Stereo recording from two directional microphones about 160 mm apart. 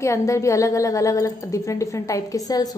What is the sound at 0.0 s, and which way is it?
A woman's voice, 20° left (ahead or behind).